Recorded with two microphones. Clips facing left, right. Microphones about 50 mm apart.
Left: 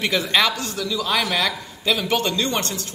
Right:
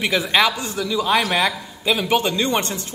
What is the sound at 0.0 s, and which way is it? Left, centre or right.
A man's voice, centre.